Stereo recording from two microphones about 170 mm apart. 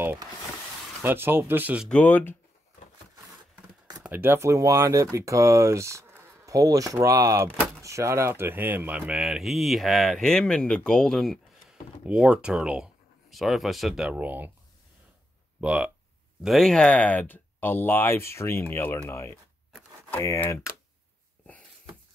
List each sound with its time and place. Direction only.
0.0 s vehicle: 10° right (ahead or behind)
1.0 s speech: 10° right (ahead or behind)
1.9 s speech: 10° left (ahead or behind)
4.0 s speech: 10° right (ahead or behind)
15.6 s speech: 5° right (ahead or behind); by 20.6 s 15° left (ahead or behind)